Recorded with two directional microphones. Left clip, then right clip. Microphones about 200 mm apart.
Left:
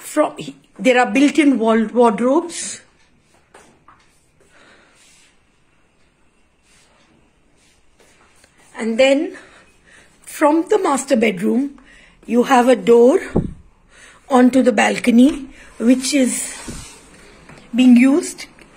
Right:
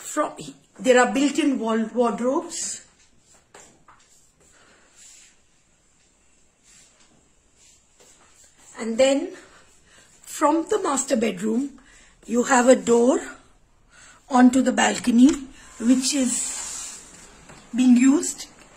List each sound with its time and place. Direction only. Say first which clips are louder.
0.1 s speech: left 8 dB; centre (ahead or behind); by 2.8 s 20° left (ahead or behind)
8.7 s a woman's voice: left 5 dB; 10° left (ahead or behind)
17.9 s a woman's voice: left 5 dB; centre (ahead or behind)